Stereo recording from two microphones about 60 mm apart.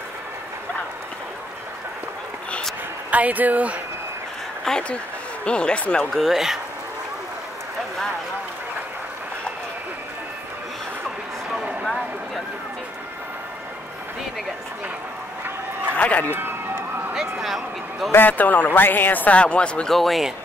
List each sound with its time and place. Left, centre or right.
3.1 s speech: right
4.7 s speech: centre
6.0 s speech: centre
16.0 s a man's voice: left
16.3 s vehicle: right
17.1 s vehicle: centre
18.1 s a man's voice: left
19.9 s speech: centre